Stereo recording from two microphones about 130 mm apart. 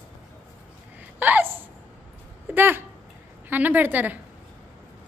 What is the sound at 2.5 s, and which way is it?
A woman's voice, 15° right (ahead or behind).